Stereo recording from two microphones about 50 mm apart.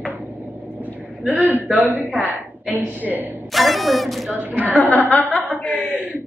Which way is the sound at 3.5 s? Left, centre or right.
Centre.